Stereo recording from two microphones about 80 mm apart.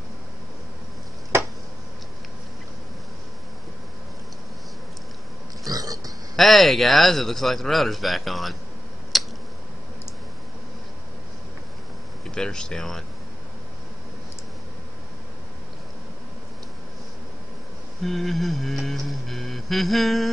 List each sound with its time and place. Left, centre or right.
5.7 s a sound: right
6.3 s a man's voice: centre
9.1 s tick-tock: centre
12.4 s speech: centre
18.0 s a man's voice: centre